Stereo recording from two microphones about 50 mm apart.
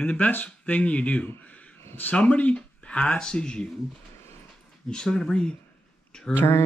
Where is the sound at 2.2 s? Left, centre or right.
Left.